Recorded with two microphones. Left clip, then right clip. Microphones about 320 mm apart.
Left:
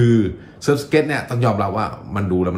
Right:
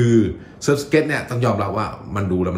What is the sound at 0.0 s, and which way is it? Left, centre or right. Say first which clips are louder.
Speech: even; centre.